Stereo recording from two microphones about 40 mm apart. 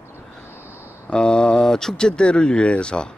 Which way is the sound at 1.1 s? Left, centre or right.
Left.